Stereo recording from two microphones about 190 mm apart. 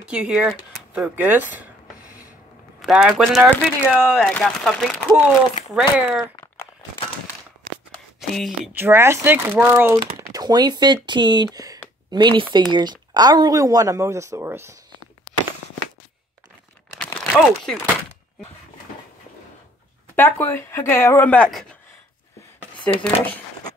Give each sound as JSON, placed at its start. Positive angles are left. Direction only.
{"t": 0.1, "sound": "speech", "side_deg": -5}
{"t": 2.8, "sound": "speech", "side_deg": 0}
{"t": 8.2, "sound": "speech", "side_deg": 0}
{"t": 8.7, "sound": "speech", "side_deg": -10}
{"t": 9.9, "sound": "speech", "side_deg": -25}
{"t": 17.0, "sound": "crumpling", "side_deg": 5}
{"t": 20.2, "sound": "speech", "side_deg": 10}
{"t": 22.9, "sound": "speech", "side_deg": 10}